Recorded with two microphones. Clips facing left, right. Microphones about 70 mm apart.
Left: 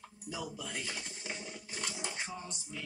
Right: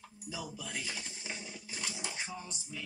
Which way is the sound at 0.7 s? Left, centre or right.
Left.